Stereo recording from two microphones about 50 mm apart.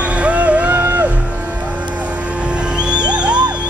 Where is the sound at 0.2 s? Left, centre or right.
Right.